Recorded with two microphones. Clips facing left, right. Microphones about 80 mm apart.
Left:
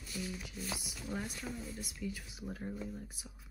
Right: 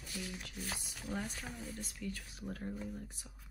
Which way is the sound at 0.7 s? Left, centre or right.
Centre.